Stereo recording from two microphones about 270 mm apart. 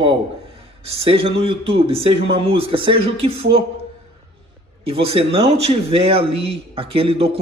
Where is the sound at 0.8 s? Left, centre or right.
Right.